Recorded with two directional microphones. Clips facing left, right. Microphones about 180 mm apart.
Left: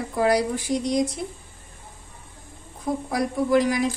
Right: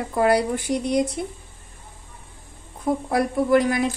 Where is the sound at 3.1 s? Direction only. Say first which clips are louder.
Right 3 dB; 60° right (ahead or behind).